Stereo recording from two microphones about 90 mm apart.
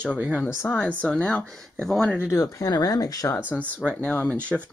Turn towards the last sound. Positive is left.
turn(degrees=15)  # may be behind; listen again after turning